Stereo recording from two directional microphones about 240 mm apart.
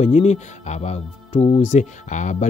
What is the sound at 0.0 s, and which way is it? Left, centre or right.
Speech, left.